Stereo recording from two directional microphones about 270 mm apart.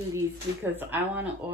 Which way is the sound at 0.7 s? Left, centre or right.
Centre.